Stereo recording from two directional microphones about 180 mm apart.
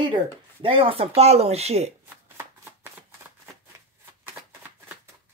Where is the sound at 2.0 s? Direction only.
15° right (ahead or behind).